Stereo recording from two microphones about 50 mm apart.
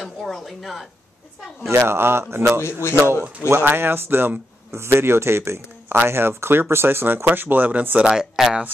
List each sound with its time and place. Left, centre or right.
0.0 s speech: centre
1.7 s a man's voice: right
2.6 s a man's voice: left
3.4 s speech: right
4.6 s a man's voice: right
7.2 s speech: right
8.0 s speech: centre